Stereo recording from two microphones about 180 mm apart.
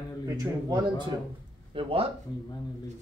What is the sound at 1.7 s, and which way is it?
Speech, 30° right (ahead or behind).